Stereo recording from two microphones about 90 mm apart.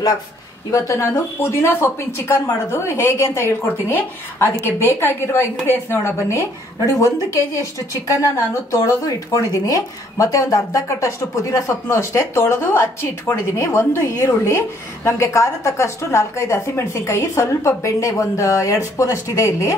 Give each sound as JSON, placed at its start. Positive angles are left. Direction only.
{"t": 0.7, "sound": "speech", "side_deg": 35}
{"t": 6.9, "sound": "a woman's voice", "side_deg": 35}